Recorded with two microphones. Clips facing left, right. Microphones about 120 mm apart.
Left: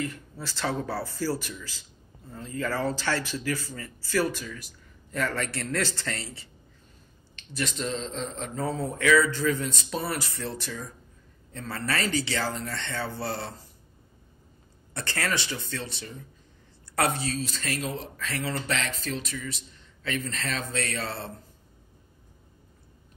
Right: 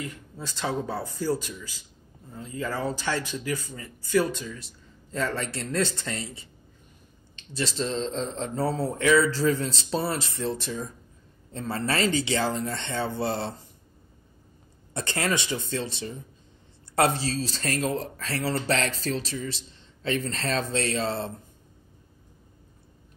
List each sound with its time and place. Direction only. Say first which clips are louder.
0.0 s speech: left 3 dB; 20° right (ahead or behind)
15.0 s speech: right 3 dB; 20° right (ahead or behind)